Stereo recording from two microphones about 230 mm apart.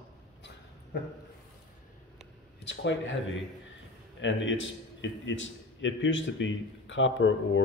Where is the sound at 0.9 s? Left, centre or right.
Left.